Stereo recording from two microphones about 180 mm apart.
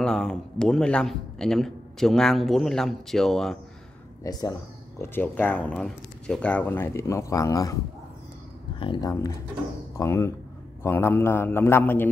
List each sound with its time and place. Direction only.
0.0 s a man's voice: 5° left (ahead or behind)
4.2 s speech: 20° left (ahead or behind)
8.7 s speech: 25° left (ahead or behind); by 12.1 s 10° left (ahead or behind)